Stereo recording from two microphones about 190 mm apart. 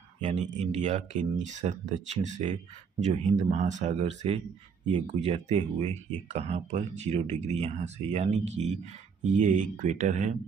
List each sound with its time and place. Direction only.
0.2 s speech: 40° right (ahead or behind)